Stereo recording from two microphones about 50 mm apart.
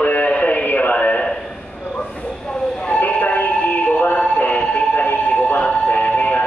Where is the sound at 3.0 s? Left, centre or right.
Left.